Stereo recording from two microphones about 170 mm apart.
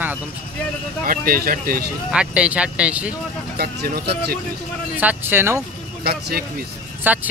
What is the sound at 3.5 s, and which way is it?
Speech, 65° right (ahead or behind).